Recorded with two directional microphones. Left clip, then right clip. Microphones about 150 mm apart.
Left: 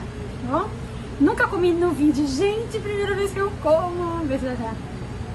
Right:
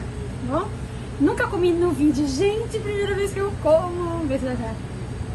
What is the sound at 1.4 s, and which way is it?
A woman's voice, 25° left (ahead or behind).